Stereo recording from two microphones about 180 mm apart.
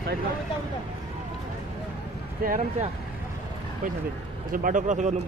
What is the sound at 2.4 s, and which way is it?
Speech, 55° right (ahead or behind).